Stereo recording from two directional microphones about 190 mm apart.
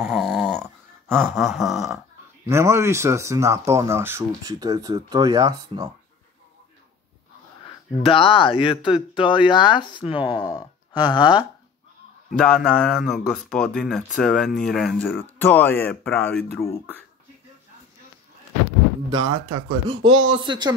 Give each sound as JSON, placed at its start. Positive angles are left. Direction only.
{"t": 0.0, "sound": "a sound", "side_deg": -5}
{"t": 1.3, "sound": "speech", "side_deg": 0}
{"t": 2.4, "sound": "speech", "side_deg": -15}
{"t": 7.9, "sound": "speech", "side_deg": 25}
{"t": 12.4, "sound": "speech", "side_deg": 5}
{"t": 19.0, "sound": "speech", "side_deg": -20}